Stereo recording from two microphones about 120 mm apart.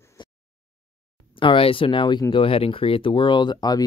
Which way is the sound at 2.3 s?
50° left (ahead or behind).